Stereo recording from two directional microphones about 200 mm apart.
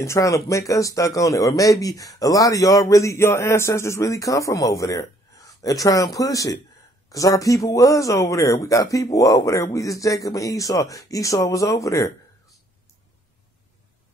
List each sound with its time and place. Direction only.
0.0 s speech: 15° left (ahead or behind)